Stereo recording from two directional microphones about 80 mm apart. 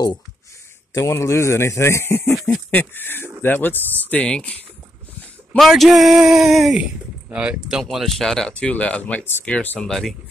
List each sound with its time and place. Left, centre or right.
0.9 s speech: left; by 4.6 s centre
5.6 s speech: centre
6.8 s speech: centre
7.9 s speech: centre
9.2 s speech: left
9.8 s speech: centre